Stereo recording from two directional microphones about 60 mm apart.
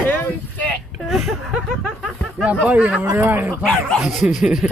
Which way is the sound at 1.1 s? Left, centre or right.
Centre.